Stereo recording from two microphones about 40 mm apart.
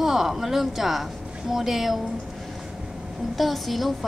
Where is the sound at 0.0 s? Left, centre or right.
Centre.